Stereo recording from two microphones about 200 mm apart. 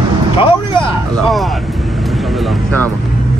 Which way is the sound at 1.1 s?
Centre (ahead or behind).